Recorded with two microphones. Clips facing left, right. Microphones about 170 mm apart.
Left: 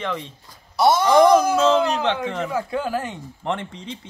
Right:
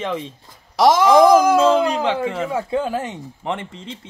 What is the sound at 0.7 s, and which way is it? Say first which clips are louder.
Speech: right 3 dB; 90° right.